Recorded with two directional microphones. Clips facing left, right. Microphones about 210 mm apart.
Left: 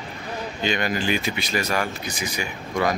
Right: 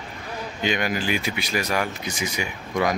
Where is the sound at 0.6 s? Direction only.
10° right (ahead or behind).